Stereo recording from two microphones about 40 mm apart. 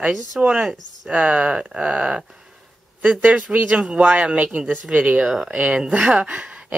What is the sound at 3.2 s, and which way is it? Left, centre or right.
Speech, right.